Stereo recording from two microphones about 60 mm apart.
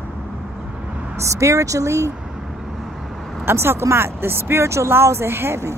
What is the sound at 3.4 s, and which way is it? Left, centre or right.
Speech, right.